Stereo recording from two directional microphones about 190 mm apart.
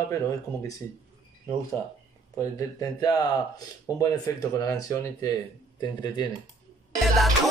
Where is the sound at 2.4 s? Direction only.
15° left (ahead or behind).